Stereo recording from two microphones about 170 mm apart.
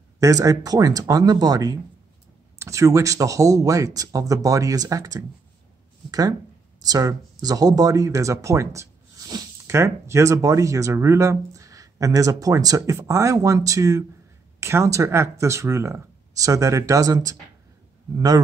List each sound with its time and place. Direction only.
0.2 s speech: 20° right (ahead or behind)